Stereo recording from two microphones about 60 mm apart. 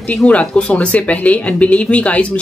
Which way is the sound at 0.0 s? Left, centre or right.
Left.